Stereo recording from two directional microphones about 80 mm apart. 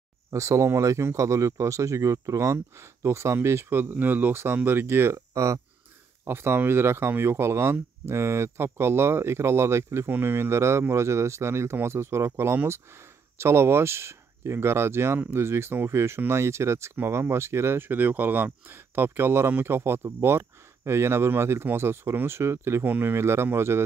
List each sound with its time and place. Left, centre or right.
0.3 s speech: right